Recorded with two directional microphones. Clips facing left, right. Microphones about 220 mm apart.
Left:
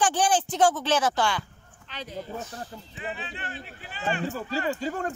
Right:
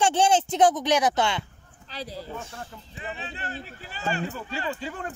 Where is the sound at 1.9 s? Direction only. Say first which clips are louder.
Even; 35° right (ahead or behind).